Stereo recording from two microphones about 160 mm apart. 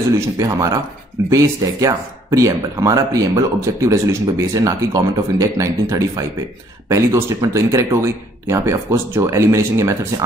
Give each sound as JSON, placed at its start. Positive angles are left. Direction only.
{"t": 0.4, "sound": "speech", "side_deg": -20}